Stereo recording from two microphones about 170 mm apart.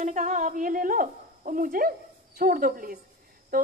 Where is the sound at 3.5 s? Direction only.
55° right (ahead or behind).